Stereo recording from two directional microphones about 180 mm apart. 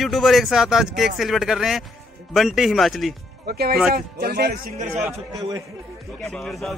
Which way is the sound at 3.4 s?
60° right (ahead or behind).